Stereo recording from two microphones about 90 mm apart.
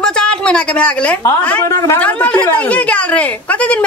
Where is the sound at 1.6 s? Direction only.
35° left (ahead or behind).